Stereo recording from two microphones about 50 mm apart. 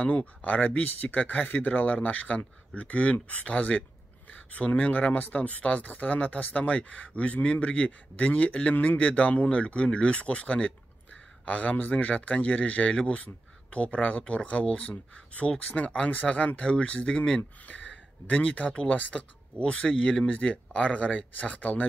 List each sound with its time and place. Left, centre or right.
0.0 s speech: left